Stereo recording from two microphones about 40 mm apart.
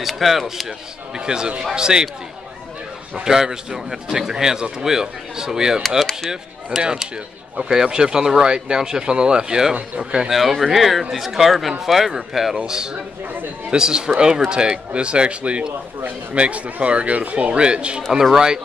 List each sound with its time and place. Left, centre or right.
0.0 s speech: centre
1.1 s speech: centre
3.3 s a man's voice: centre
6.0 s a man's voice: centre
7.5 s a man's voice: right
18.3 s a man's voice: centre